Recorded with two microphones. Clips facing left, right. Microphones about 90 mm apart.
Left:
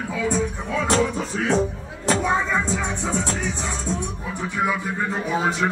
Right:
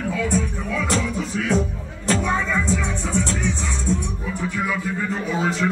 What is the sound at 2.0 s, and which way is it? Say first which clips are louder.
Music: left 1 dB; 20° left (ahead or behind).